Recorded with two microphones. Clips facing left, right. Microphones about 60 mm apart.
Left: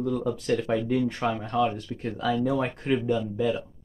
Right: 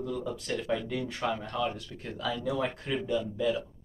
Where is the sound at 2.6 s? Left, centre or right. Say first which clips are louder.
Left 5 dB; left.